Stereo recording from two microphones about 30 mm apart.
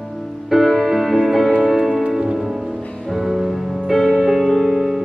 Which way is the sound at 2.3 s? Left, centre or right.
Centre.